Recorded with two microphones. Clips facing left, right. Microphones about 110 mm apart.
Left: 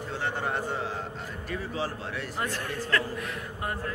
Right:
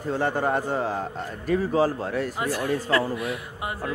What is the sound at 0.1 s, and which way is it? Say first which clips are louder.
A man's voice: right 8 dB; 45° right (ahead or behind).